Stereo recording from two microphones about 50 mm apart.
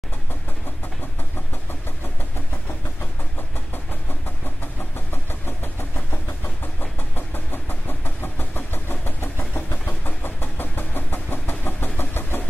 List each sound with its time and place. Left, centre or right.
4.7 s vehicle: left
6.8 s a sound: left
9.8 s vehicle: left